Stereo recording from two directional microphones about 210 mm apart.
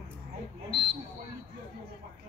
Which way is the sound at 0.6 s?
25° right (ahead or behind).